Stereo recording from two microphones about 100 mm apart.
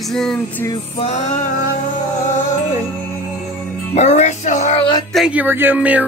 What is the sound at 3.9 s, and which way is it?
Music, 90° left.